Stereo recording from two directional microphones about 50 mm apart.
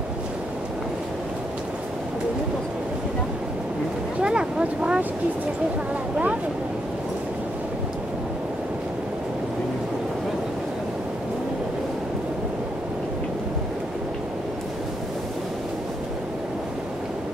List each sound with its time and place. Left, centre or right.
4.2 s speech: centre